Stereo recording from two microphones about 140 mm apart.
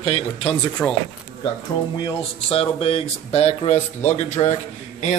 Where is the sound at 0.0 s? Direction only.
45° left (ahead or behind).